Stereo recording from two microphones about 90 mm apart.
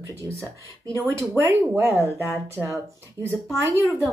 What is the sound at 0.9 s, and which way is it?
Speech, 30° right (ahead or behind).